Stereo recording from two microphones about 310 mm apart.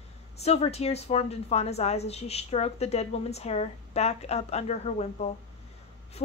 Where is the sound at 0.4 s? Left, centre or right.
Centre.